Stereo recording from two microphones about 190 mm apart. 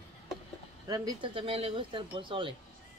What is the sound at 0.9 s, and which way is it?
Speech, 20° right (ahead or behind).